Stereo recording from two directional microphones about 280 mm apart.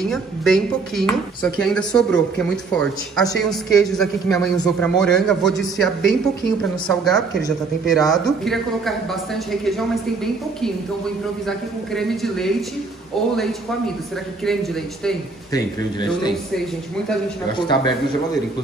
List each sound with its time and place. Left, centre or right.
0.0 s speech: centre
14.4 s speech: centre
15.5 s speech: centre
17.6 s speech: centre